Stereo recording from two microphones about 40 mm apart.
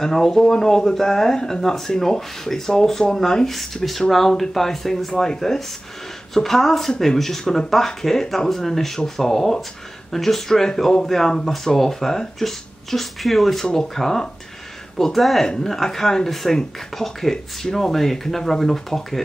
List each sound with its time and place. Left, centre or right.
0.0 s speech: centre
15.4 s speech: centre